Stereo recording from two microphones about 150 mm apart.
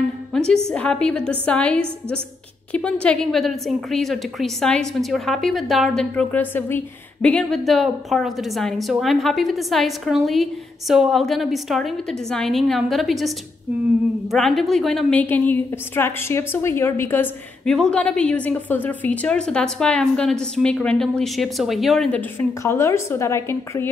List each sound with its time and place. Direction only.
0.3 s music: 5° left (ahead or behind)
0.7 s a woman's voice: 5° left (ahead or behind)
14.3 s a woman's voice: centre (ahead or behind)
22.6 s a woman's voice: 15° left (ahead or behind)